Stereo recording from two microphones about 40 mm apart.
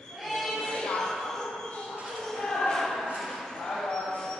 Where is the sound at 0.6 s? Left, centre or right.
Centre.